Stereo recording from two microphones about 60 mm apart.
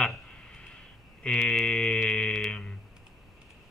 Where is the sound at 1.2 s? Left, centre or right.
Centre.